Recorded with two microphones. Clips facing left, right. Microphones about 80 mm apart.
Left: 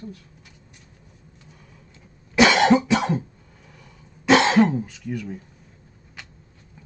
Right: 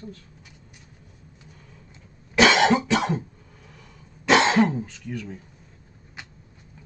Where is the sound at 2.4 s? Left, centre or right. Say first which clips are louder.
Left 2 dB; centre.